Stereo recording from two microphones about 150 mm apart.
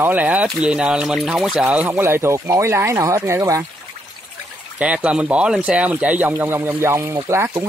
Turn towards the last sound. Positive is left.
turn(degrees=-20)  # may be behind; listen again after turning